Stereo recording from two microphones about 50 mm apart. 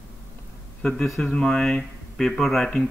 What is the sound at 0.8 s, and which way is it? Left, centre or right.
Speech, centre.